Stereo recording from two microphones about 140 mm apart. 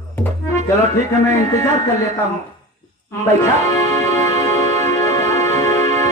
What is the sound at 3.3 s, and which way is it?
Music, 25° left (ahead or behind).